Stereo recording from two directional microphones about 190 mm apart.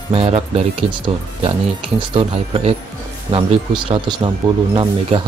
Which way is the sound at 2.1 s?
30° right (ahead or behind).